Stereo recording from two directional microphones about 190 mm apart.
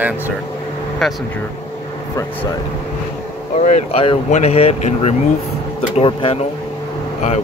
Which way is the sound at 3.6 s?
40° left (ahead or behind).